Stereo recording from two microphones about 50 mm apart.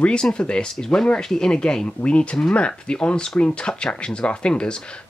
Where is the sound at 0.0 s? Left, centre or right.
Centre.